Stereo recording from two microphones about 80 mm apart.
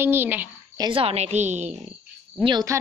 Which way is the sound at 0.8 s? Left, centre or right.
Right.